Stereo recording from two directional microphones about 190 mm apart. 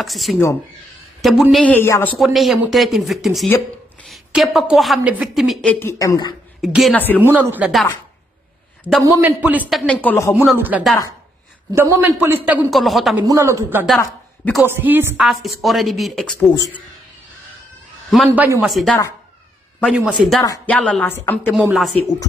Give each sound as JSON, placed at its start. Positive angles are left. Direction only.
{"t": 0.0, "sound": "a woman's voice", "side_deg": 0}
{"t": 1.6, "sound": "a woman's voice", "side_deg": 10}
{"t": 2.1, "sound": "a woman's voice", "side_deg": 0}
{"t": 6.6, "sound": "a woman's voice", "side_deg": 0}
{"t": 7.2, "sound": "a man's voice", "side_deg": -10}
{"t": 9.0, "sound": "a woman's voice", "side_deg": -10}
{"t": 10.6, "sound": "a woman's voice", "side_deg": -5}
{"t": 13.3, "sound": "a man's voice", "side_deg": -15}
{"t": 13.8, "sound": "a woman's voice", "side_deg": 0}
{"t": 14.7, "sound": "a woman's voice", "side_deg": -10}
{"t": 18.1, "sound": "a woman's voice", "side_deg": -5}
{"t": 20.4, "sound": "a woman's voice", "side_deg": 15}
{"t": 20.7, "sound": "a woman's voice", "side_deg": 5}
{"t": 21.5, "sound": "a woman's voice", "side_deg": 0}